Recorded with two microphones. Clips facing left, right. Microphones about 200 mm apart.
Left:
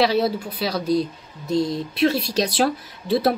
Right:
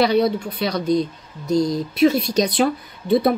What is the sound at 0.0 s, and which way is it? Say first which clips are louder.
A woman's voice: right 2 dB; 5° left (ahead or behind).